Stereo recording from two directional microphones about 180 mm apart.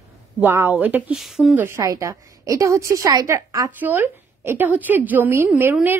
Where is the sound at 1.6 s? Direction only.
15° right (ahead or behind).